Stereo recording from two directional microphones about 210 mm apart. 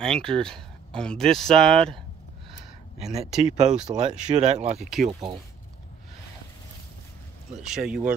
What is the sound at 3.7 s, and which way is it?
Speech, 30° right (ahead or behind).